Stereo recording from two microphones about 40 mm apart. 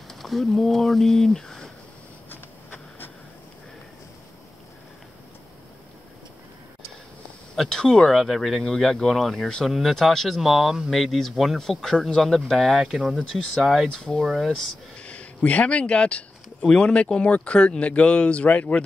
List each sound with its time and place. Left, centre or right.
0.1 s speech: centre
2.2 s a sound: left
7.5 s speech: centre
8.0 s speech: centre
10.9 s speech: centre
13.9 s speech: left
14.2 s speech: centre
15.0 s speech: left